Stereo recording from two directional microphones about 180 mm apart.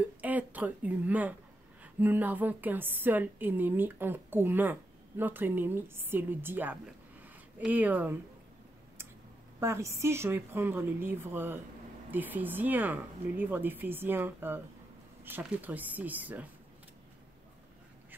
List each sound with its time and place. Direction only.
0.0 s a woman's voice: 10° right (ahead or behind)
9.6 s a woman's voice: 15° right (ahead or behind)